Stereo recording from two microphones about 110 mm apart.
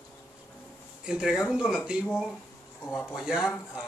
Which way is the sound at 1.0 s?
5° right (ahead or behind).